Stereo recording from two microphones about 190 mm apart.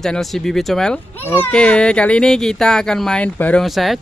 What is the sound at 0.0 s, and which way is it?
A child's voice, centre (ahead or behind).